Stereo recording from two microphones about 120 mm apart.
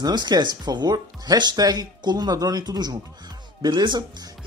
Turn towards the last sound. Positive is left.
turn(degrees=-40)  # may be behind; listen again after turning